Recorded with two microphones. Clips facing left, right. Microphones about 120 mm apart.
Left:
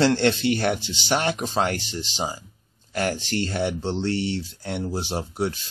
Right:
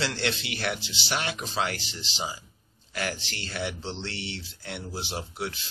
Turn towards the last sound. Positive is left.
turn(degrees=40)  # may be behind; listen again after turning